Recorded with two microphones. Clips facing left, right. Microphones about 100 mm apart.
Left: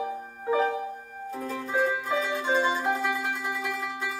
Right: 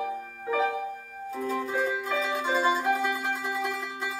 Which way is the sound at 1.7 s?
Centre (ahead or behind).